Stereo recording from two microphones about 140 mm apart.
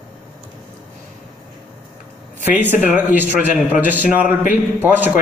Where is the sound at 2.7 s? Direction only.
10° right (ahead or behind).